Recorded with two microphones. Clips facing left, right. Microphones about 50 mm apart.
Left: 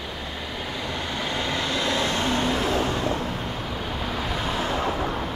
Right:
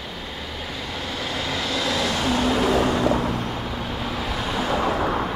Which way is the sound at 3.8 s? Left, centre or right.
Centre.